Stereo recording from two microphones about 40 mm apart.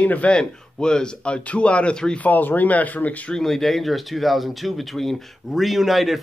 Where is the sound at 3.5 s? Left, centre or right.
Centre.